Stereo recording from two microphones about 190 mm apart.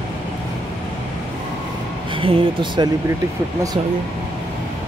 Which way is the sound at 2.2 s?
25° right (ahead or behind).